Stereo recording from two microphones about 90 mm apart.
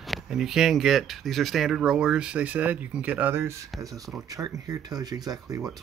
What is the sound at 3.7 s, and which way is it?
Speech, 40° right (ahead or behind).